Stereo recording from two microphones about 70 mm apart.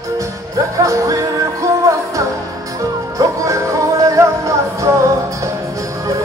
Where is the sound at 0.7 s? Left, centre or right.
Right.